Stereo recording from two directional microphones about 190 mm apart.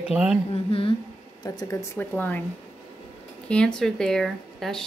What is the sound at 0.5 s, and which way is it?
Speech, 30° left (ahead or behind).